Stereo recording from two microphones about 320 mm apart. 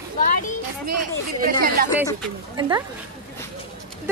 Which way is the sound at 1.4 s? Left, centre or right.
Right.